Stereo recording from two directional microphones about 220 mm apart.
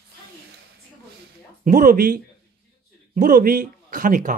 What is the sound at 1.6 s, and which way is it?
Speech, 40° right (ahead or behind).